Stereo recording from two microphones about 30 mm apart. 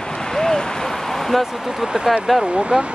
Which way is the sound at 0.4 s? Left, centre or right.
Left.